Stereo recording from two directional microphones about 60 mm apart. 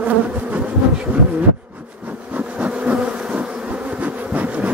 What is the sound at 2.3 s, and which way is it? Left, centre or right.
Bee, right.